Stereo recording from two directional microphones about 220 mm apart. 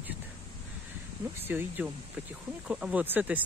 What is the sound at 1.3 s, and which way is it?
Speech, 10° right (ahead or behind).